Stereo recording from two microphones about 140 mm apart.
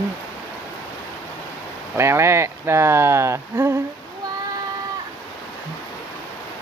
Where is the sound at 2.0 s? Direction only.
20° right (ahead or behind).